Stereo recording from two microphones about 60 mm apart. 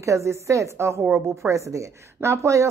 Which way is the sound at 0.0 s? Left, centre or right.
Right.